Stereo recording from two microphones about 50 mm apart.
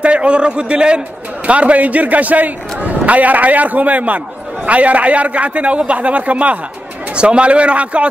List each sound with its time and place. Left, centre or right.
0.0 s a man's voice: right